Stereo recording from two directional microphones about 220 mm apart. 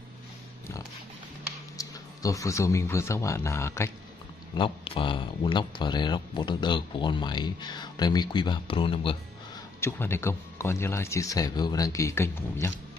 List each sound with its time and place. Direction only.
1.8 s speech: 15° left (ahead or behind)
4.6 s speech: 25° left (ahead or behind)
9.8 s speech: 10° left (ahead or behind)